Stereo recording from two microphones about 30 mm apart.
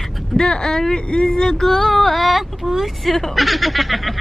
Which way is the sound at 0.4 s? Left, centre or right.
Centre.